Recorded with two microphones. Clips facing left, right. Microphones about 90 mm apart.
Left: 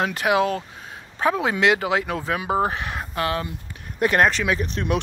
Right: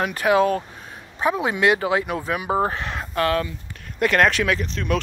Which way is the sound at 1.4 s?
30° left (ahead or behind).